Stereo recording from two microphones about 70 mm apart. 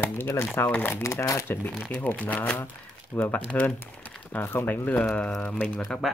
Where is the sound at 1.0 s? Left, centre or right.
Left.